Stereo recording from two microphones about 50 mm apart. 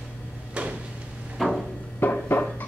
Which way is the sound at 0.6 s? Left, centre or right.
Right.